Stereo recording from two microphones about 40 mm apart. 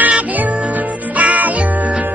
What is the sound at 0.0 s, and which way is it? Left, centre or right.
Music, right.